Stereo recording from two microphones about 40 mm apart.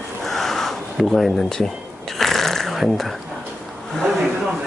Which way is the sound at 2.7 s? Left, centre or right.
Centre.